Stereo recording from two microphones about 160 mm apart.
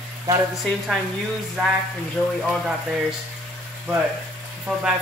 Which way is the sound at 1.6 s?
10° right (ahead or behind).